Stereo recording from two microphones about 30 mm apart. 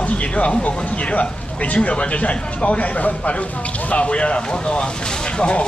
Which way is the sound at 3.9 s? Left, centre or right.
Left.